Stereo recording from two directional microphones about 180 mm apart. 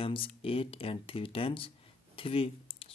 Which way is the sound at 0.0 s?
30° left (ahead or behind).